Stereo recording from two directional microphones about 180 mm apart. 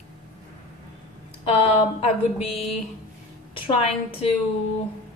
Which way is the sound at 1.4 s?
30° left (ahead or behind).